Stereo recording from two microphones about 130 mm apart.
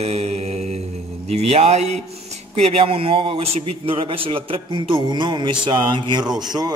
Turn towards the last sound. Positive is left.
turn(degrees=-30)  # may be behind; listen again after turning